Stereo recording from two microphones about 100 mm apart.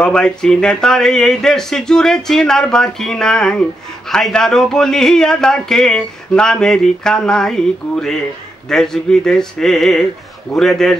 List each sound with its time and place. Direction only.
0.0 s speech: 10° left (ahead or behind)